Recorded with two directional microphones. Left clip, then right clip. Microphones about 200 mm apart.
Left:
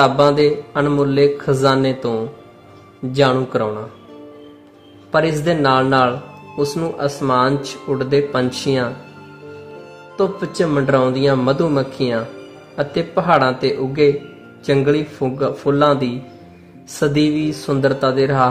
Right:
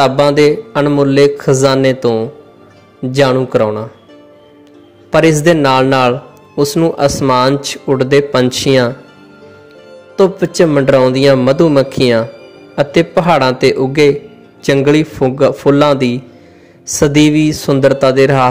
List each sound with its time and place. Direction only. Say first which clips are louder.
0.0 s a man's voice: right 4 dB; 20° right (ahead or behind)
5.1 s a man's voice: right 7 dB; 25° right (ahead or behind)
10.1 s a man's voice: right 8 dB; 25° right (ahead or behind)